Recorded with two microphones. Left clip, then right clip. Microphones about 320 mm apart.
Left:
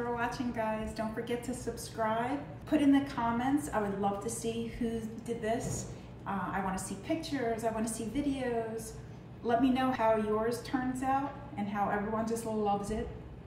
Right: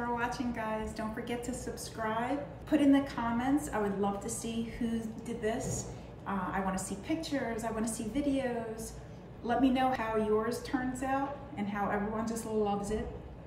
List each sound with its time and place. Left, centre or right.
0.1 s a woman's voice: centre